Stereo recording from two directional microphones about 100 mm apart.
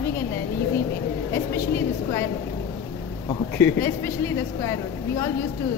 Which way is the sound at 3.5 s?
25° left (ahead or behind).